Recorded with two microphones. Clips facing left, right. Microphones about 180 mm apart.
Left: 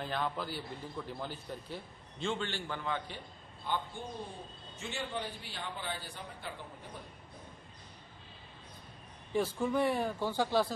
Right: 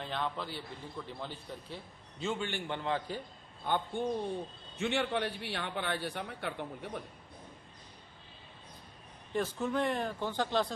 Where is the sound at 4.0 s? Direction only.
60° right (ahead or behind).